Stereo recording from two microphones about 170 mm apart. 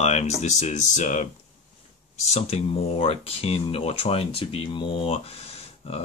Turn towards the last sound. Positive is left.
turn(degrees=35)  # may be behind; listen again after turning